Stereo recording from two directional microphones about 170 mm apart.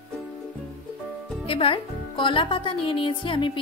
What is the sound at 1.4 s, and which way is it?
Speech, 35° left (ahead or behind).